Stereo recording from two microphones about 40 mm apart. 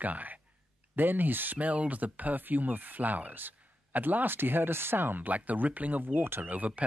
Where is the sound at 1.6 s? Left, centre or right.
Right.